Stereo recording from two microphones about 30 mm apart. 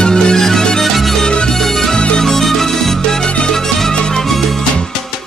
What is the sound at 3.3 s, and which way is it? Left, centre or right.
Music, left.